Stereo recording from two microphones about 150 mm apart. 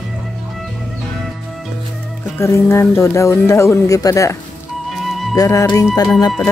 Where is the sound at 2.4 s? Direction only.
20° left (ahead or behind).